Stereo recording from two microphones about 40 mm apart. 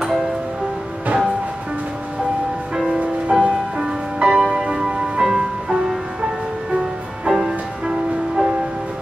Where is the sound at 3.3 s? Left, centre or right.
Centre.